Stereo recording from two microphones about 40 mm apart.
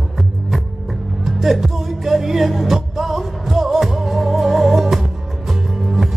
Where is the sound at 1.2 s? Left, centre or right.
Centre.